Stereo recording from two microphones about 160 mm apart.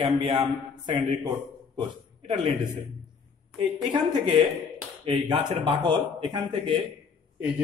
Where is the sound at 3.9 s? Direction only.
30° right (ahead or behind).